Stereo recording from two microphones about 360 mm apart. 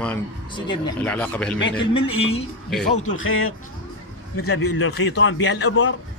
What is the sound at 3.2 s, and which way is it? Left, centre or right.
Speech, left.